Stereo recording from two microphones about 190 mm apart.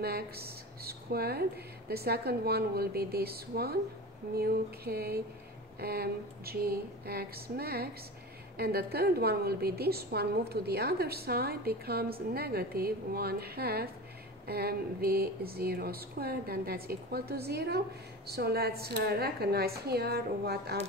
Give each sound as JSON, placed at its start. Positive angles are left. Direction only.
{"t": 0.0, "sound": "speech", "side_deg": -55}